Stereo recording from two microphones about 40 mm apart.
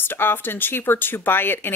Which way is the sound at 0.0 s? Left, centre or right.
Left.